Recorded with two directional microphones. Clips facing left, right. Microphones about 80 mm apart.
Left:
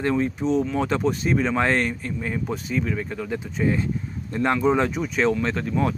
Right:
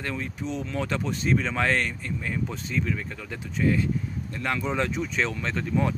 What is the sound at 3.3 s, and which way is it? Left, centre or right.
Speech, left.